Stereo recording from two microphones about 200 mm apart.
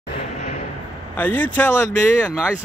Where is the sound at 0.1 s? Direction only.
35° left (ahead or behind).